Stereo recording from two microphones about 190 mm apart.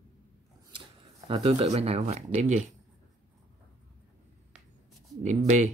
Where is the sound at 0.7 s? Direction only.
25° right (ahead or behind).